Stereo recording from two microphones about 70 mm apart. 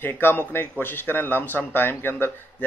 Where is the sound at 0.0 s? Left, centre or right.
Left.